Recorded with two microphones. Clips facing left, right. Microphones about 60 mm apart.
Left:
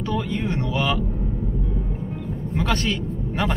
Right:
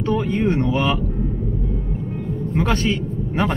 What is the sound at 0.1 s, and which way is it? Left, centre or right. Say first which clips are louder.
Speech: right 6 dB; right.